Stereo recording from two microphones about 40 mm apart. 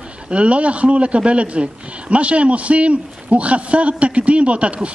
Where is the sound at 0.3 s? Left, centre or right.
Right.